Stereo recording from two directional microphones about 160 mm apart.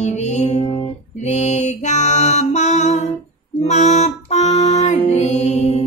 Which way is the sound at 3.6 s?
45° left (ahead or behind).